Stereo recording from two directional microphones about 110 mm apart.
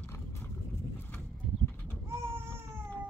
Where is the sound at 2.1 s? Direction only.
25° right (ahead or behind).